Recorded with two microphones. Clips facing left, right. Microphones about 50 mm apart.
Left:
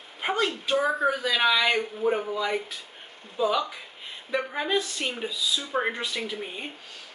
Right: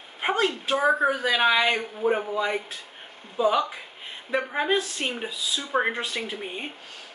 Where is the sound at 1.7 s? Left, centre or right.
Centre.